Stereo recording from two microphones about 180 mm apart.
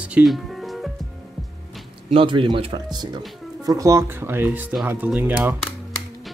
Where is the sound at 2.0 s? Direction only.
30° right (ahead or behind).